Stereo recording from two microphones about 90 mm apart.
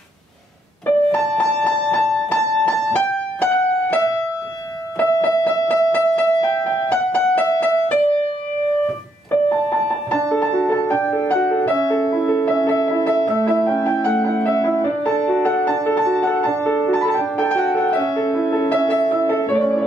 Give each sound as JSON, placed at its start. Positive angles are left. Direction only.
{"t": 0.8, "sound": "music", "side_deg": 15}
{"t": 5.4, "sound": "music", "side_deg": 15}
{"t": 9.5, "sound": "music", "side_deg": 10}
{"t": 12.0, "sound": "music", "side_deg": 45}
{"t": 12.7, "sound": "music", "side_deg": 30}
{"t": 14.0, "sound": "music", "side_deg": 15}
{"t": 18.2, "sound": "music", "side_deg": 35}
{"t": 19.0, "sound": "music", "side_deg": 15}